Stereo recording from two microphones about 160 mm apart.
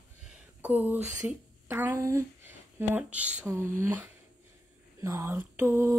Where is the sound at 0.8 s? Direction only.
10° right (ahead or behind).